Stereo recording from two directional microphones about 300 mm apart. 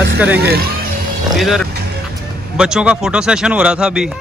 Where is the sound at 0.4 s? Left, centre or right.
Right.